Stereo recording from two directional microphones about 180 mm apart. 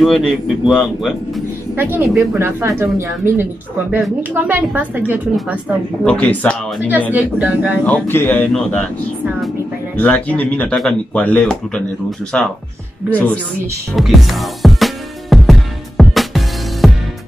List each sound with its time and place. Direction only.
0.0 s speech: centre (ahead or behind)
1.8 s a woman's voice: 10° right (ahead or behind)
6.0 s speech: 5° left (ahead or behind)
7.1 s a woman's voice: 10° right (ahead or behind)
7.8 s speech: 10° left (ahead or behind)
9.9 s speech: 10° left (ahead or behind)
13.9 s music: centre (ahead or behind)